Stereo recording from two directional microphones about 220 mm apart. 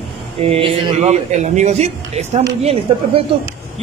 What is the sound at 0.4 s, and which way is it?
A woman's voice, 25° right (ahead or behind).